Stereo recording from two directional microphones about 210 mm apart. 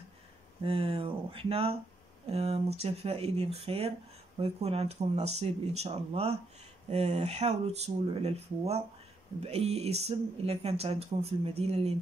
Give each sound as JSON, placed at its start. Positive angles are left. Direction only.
{"t": 0.7, "sound": "speech", "side_deg": -25}